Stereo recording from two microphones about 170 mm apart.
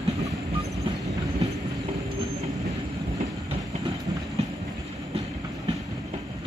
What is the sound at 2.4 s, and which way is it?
Train, 40° right (ahead or behind).